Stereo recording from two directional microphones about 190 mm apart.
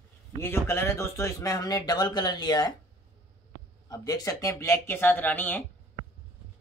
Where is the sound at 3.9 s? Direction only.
20° left (ahead or behind).